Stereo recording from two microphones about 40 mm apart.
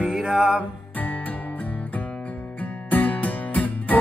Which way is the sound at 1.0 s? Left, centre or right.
Left.